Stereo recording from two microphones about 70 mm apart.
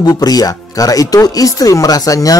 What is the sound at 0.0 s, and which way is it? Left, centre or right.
Speech, left.